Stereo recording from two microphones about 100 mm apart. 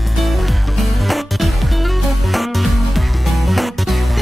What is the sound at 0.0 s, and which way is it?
Music, centre (ahead or behind).